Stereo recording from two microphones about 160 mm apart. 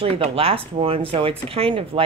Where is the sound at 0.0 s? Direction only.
35° right (ahead or behind).